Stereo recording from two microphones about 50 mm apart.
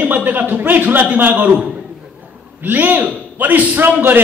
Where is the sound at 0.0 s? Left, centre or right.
Right.